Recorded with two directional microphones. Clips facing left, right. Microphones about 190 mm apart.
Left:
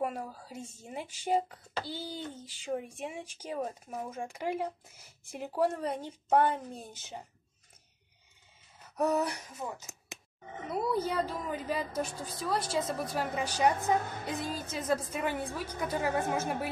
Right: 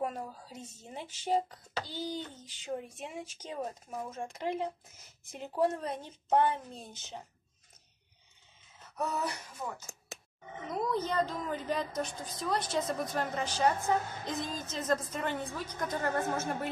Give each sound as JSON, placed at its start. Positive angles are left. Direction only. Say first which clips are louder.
{"t": 0.0, "sound": "speech", "louder": "left 1 dB", "side_deg": 10}
{"t": 8.9, "sound": "speech", "louder": "left 5 dB", "side_deg": 15}